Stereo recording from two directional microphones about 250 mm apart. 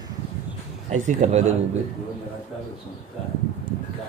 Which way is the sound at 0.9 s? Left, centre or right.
Right.